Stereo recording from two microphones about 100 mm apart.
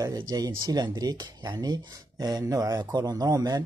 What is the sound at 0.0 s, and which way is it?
Speech, 35° right (ahead or behind).